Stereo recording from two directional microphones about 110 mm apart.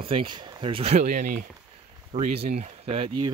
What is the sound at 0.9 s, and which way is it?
Speech, 90° right.